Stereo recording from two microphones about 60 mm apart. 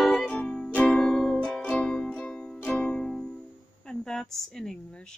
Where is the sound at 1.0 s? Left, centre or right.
Centre; by 3.0 s left.